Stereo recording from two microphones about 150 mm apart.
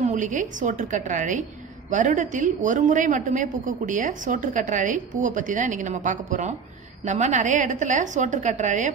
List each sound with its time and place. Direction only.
0.0 s a woman's voice: 55° right (ahead or behind)